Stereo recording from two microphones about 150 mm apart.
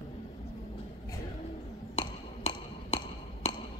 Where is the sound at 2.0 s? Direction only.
45° left (ahead or behind).